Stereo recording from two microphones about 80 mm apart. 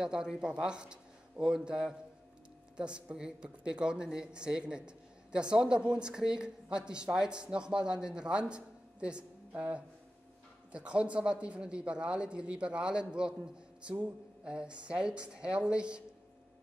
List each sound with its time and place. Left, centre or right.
0.0 s speech: centre